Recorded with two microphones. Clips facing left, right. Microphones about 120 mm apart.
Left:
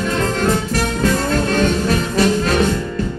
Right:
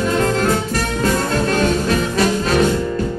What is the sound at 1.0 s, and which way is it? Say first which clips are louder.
Music: even; 40° right (ahead or behind).